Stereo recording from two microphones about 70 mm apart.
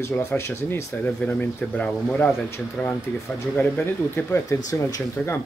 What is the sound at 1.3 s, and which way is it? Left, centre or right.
Speech, left.